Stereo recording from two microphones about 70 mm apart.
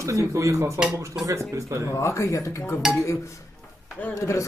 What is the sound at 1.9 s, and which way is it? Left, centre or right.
Speech, left.